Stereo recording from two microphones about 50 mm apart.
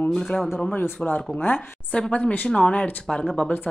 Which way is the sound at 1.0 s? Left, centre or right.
Left.